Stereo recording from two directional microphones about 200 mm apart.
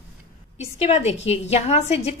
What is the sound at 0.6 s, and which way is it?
A woman's voice, 30° left (ahead or behind).